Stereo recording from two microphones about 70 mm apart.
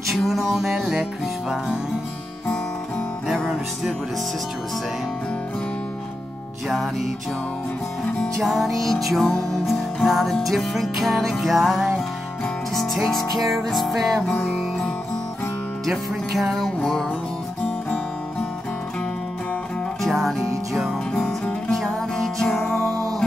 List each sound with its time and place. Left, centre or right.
0.1 s music: centre
8.2 s music: centre
14.2 s music: centre
15.8 s music: centre
20.0 s music: centre
21.1 s music: centre
22.6 s music: left